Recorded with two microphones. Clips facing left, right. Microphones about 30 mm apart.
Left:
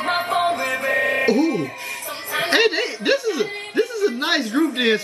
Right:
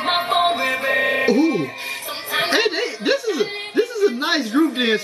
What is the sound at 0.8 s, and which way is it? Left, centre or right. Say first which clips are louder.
Music: right 1 dB; right.